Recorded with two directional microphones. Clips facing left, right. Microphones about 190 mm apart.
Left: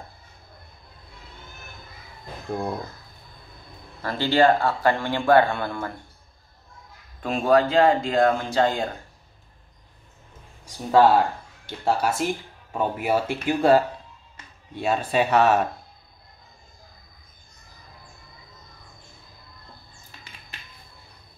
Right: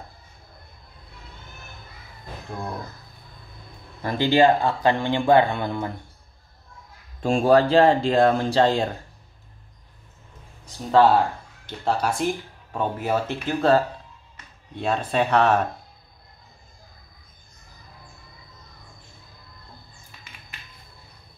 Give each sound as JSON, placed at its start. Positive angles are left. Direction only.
{"t": 4.0, "sound": "speech", "side_deg": -15}
{"t": 7.2, "sound": "speech", "side_deg": -30}
{"t": 10.6, "sound": "speech", "side_deg": 10}